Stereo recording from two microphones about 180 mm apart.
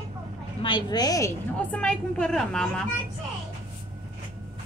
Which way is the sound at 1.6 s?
5° left (ahead or behind).